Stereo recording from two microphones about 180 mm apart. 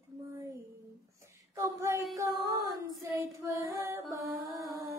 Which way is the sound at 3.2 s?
15° right (ahead or behind).